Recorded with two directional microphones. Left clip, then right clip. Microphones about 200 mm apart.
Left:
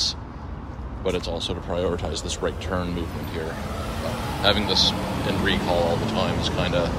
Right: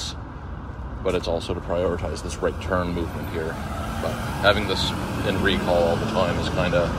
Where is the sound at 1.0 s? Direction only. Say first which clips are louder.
Right 2 dB; 5° left (ahead or behind).